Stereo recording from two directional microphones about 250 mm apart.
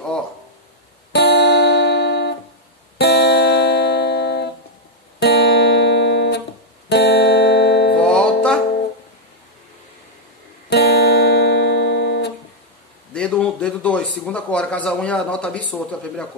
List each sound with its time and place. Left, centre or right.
1.1 s music: left
8.0 s music: centre
10.7 s guitar: left
13.1 s speech: centre